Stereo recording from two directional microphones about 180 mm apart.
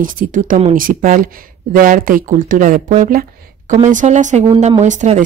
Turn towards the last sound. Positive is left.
turn(degrees=-40)  # may be behind; listen again after turning